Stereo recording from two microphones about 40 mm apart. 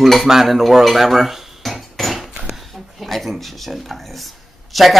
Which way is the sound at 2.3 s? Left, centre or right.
Centre.